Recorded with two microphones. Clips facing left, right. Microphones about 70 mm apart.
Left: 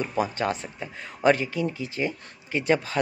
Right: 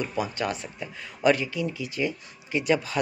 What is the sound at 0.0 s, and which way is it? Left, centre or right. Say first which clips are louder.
Speech: left 2 dB; left.